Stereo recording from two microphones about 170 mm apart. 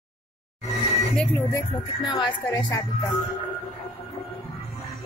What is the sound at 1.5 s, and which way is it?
Speech, 25° left (ahead or behind).